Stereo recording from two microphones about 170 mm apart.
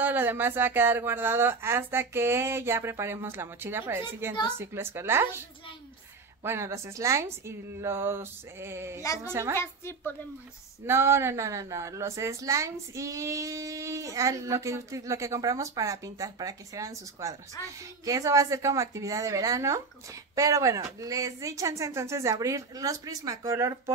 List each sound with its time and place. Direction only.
0.0 s speech: 10° right (ahead or behind)
6.4 s speech: 15° right (ahead or behind)
9.0 s a woman's voice: 20° left (ahead or behind)
9.3 s speech: 15° right (ahead or behind)
9.6 s a woman's voice: 15° left (ahead or behind)
10.9 s a woman's voice: 15° right (ahead or behind)